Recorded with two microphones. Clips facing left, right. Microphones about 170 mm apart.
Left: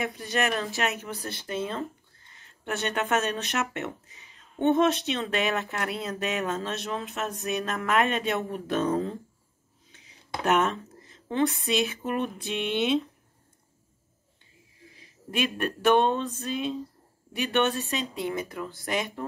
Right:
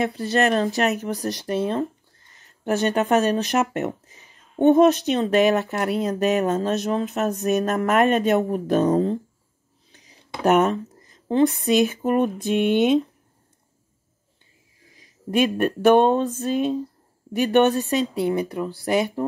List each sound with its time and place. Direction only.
0.0 s speech: 35° right (ahead or behind)
10.4 s speech: 40° right (ahead or behind)
15.0 s speech: 45° right (ahead or behind)